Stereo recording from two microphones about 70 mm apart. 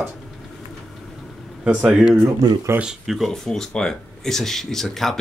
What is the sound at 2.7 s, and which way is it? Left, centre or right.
Speech, right.